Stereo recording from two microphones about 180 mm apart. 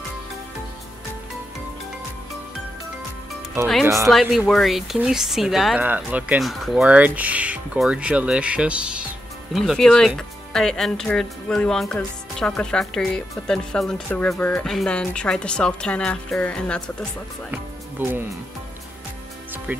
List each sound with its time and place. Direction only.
3.8 s speech: 15° right (ahead or behind)
4.1 s speech: centre (ahead or behind)
17.5 s music: 10° right (ahead or behind)